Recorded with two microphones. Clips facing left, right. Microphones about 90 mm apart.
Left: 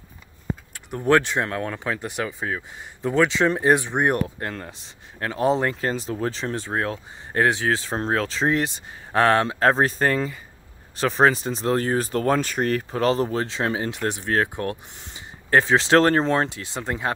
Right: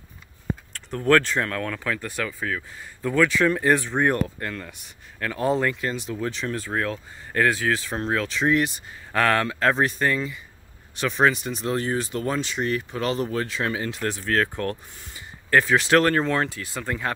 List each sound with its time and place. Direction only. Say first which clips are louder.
0.7 s speech: even; 15° left (ahead or behind)
4.4 s speech: left 1 dB; 30° left (ahead or behind)
5.8 s speech: left 3 dB; 35° left (ahead or behind)